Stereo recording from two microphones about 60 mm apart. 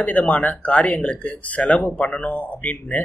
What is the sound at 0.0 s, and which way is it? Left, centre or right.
Speech, left.